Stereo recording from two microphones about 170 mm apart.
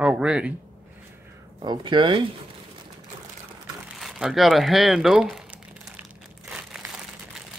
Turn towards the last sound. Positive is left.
turn(degrees=-5)  # may be behind; listen again after turning